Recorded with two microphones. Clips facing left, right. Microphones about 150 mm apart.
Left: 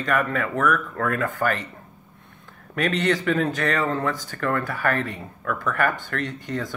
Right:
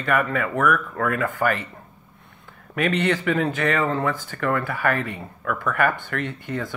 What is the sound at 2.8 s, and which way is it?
Speech, 40° left (ahead or behind).